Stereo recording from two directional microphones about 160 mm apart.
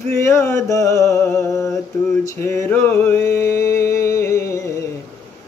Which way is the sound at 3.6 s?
15° left (ahead or behind).